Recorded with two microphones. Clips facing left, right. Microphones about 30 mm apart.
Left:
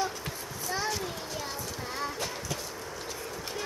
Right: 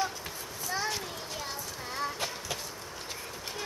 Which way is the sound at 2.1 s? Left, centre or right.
Centre.